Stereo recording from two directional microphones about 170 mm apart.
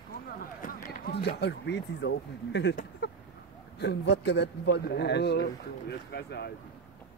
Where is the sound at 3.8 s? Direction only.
90° left; by 6.5 s 75° left (ahead or behind).